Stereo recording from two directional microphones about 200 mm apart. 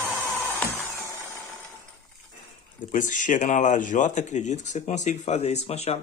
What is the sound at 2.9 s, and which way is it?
Speech, 40° left (ahead or behind).